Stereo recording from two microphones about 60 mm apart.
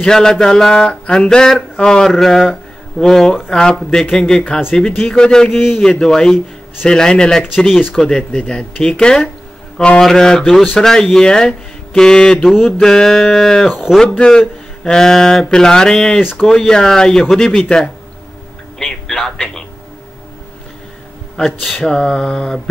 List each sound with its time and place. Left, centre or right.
0.0 s speech: centre
5.5 s a man's voice: centre
5.8 s speech: centre
7.5 s a man's voice: centre
12.4 s a man's voice: centre
12.8 s a man's voice: centre
21.8 s speech: centre